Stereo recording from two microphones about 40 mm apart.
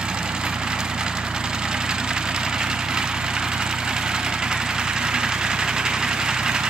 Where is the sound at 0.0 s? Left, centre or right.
Right.